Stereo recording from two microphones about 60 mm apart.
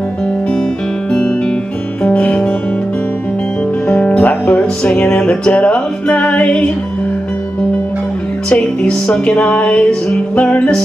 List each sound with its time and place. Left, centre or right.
2.0 s music: left
3.8 s music: left
8.5 s music: centre